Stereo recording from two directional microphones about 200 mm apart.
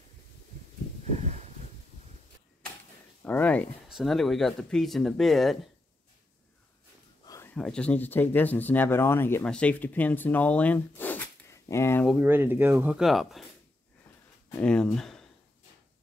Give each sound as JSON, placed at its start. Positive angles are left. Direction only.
{"t": 1.2, "sound": "a sound", "side_deg": -35}
{"t": 3.2, "sound": "speech", "side_deg": 10}
{"t": 7.2, "sound": "a sound", "side_deg": 15}
{"t": 7.5, "sound": "speech", "side_deg": 5}
{"t": 12.1, "sound": "speech", "side_deg": -10}
{"t": 14.6, "sound": "speech", "side_deg": 5}